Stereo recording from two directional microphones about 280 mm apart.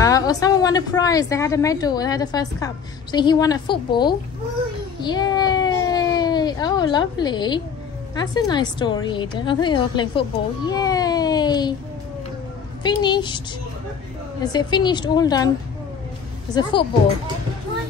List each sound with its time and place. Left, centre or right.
0.0 s a woman's voice: centre
5.0 s a sound: centre
8.1 s a woman's voice: centre
10.7 s baby cry: centre
12.8 s a woman's voice: centre
14.4 s a woman's voice: centre